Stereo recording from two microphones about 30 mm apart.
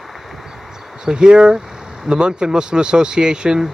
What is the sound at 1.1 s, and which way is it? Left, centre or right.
Speech, right.